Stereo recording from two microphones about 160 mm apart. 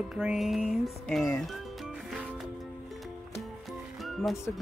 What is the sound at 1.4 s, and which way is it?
Music, centre (ahead or behind).